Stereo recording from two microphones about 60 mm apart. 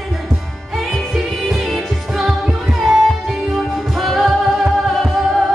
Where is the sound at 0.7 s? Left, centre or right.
Centre.